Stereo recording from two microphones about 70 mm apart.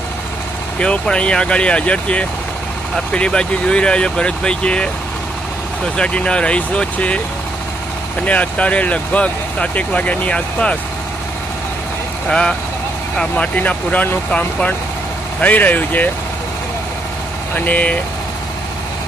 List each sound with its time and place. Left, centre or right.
0.7 s speech: centre
5.9 s speech: centre
8.2 s speech: centre
12.3 s speech: centre
17.6 s speech: left